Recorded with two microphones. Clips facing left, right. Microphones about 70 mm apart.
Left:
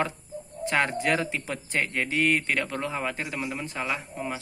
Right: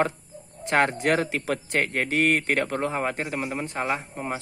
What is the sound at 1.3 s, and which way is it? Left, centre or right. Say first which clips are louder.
Speech: right 5 dB; right.